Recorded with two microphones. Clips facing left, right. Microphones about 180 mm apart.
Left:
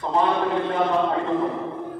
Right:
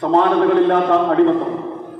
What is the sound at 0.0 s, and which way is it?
Speech, 70° right (ahead or behind).